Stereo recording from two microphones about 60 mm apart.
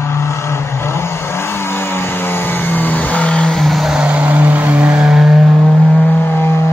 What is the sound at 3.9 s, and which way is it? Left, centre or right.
Vehicle, centre.